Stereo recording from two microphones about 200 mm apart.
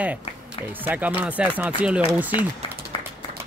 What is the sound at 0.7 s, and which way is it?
Speech, 10° right (ahead or behind).